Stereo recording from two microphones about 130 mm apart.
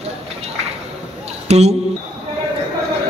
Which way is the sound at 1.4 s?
55° right (ahead or behind).